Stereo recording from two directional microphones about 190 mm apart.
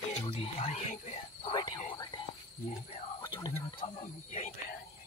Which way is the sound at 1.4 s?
25° left (ahead or behind).